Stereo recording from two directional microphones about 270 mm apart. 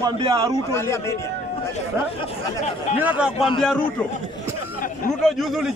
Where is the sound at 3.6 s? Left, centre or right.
Centre.